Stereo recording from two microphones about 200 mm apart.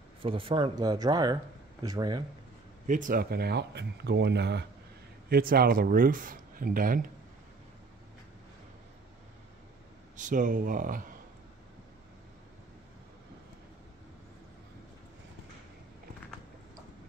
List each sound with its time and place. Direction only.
0.2 s speech: 25° right (ahead or behind)
2.9 s speech: 40° right (ahead or behind); by 4.6 s 60° right (ahead or behind)
5.3 s speech: 50° right (ahead or behind)
10.1 s speech: 40° right (ahead or behind)